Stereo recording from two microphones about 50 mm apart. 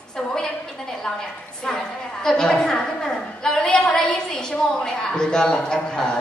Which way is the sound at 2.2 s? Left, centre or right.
Centre.